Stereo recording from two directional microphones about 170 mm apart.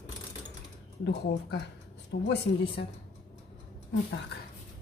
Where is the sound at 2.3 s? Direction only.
80° left.